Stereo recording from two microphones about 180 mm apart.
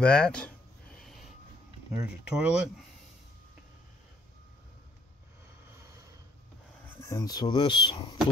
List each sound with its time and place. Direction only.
0.0 s speech: 5° left (ahead or behind)
0.9 s a sound: centre (ahead or behind)
2.0 s speech: 5° right (ahead or behind)
7.0 s speech: 20° left (ahead or behind)